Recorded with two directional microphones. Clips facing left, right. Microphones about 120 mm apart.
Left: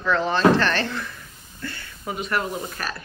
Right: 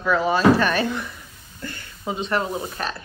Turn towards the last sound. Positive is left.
turn(degrees=-25)  # may be behind; listen again after turning